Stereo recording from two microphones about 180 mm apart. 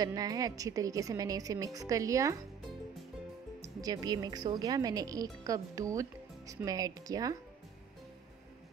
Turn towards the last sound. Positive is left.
turn(degrees=-20)  # may be behind; listen again after turning